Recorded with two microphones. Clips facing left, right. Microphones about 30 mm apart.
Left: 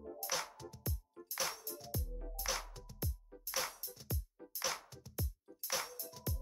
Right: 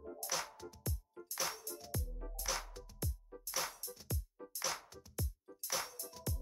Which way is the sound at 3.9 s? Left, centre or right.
Centre.